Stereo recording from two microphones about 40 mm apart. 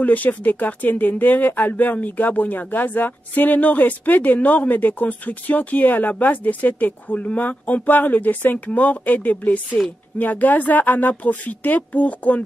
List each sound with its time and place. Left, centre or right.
0.0 s speech: left